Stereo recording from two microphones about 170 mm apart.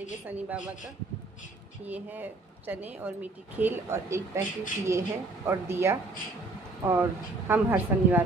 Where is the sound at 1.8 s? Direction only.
10° right (ahead or behind).